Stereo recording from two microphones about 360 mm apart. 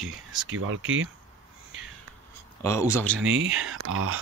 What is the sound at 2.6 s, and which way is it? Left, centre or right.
Speech, centre.